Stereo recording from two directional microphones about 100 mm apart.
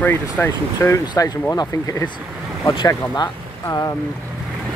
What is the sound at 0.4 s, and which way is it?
Speech, 20° left (ahead or behind).